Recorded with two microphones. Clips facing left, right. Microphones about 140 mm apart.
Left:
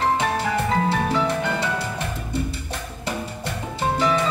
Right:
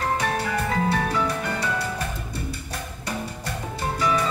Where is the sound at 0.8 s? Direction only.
25° left (ahead or behind).